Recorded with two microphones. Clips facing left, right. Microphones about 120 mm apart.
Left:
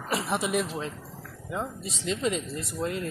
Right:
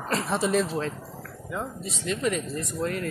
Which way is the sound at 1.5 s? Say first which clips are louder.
Even; 20° left (ahead or behind).